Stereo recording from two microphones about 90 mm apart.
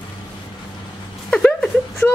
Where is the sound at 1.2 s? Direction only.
10° left (ahead or behind).